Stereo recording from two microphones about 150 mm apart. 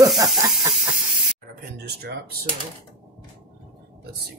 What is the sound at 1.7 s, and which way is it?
Speech, 90° right.